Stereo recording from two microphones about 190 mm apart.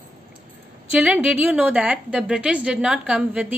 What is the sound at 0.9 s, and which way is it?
A woman's voice, 5° right (ahead or behind).